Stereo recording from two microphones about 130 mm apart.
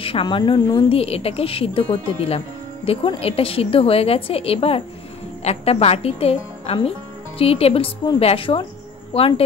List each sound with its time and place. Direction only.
0.0 s speech: 40° left (ahead or behind)
0.9 s speech: 50° left (ahead or behind)